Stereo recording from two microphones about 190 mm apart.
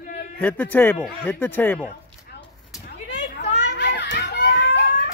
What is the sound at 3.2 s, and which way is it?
Children playing, 60° left (ahead or behind).